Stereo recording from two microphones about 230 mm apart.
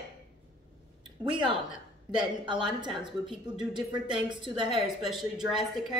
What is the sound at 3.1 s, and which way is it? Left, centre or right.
Speech, centre.